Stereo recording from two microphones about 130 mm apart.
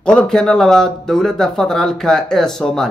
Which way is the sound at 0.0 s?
5° left (ahead or behind).